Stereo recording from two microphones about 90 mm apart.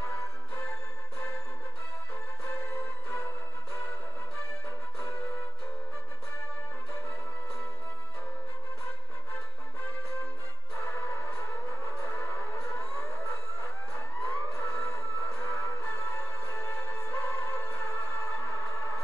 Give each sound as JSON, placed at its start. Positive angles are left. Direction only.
{"t": 2.4, "sound": "music", "side_deg": 25}
{"t": 10.9, "sound": "music", "side_deg": 25}